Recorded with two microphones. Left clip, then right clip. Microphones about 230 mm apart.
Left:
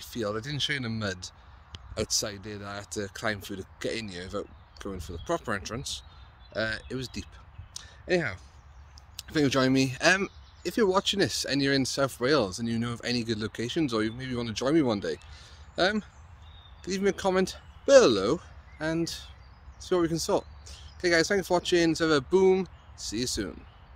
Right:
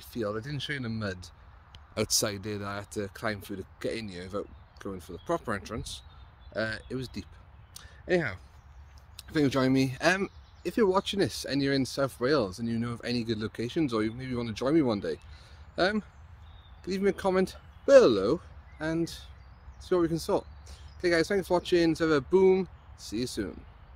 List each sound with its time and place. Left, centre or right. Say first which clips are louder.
0.0 s speech: left 1 dB; centre
2.0 s speech: right 1 dB; right
2.9 s speech: left 4 dB; centre
7.7 s a sound: even; centre
9.1 s speech: left 2 dB; centre